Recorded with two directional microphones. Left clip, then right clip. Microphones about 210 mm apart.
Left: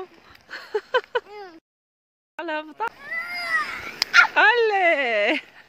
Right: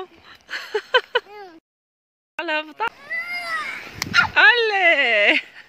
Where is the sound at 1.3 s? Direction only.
25° right (ahead or behind).